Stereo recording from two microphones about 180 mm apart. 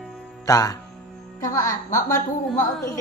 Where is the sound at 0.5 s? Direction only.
20° left (ahead or behind).